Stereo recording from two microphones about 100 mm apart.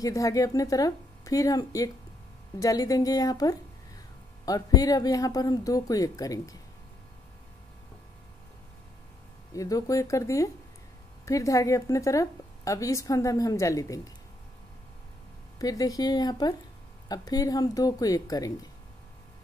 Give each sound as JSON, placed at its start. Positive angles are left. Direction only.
{"t": 0.0, "sound": "a woman's voice", "side_deg": 35}
{"t": 9.5, "sound": "a woman's voice", "side_deg": 35}
{"t": 15.6, "sound": "a woman's voice", "side_deg": 35}